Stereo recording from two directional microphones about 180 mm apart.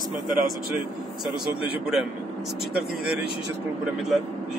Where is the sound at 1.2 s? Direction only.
Centre (ahead or behind).